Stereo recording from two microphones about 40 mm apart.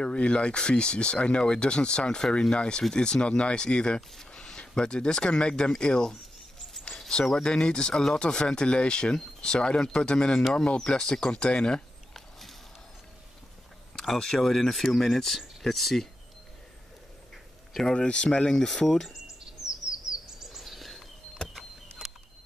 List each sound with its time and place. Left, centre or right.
0.0 s speech: left
7.3 s speech: left
12.1 s a sound: centre
13.9 s speech: centre
17.8 s speech: left
18.5 s speech: centre
20.4 s bird: centre